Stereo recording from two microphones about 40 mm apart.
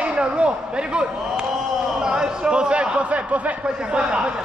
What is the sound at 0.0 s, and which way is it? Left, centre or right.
A man's voice, right.